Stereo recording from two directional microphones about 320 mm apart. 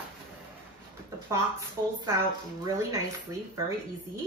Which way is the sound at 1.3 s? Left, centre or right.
Centre.